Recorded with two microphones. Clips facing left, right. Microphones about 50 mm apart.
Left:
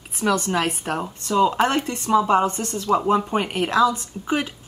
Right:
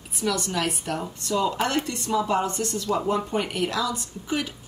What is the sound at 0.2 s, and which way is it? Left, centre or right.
A woman's voice, left.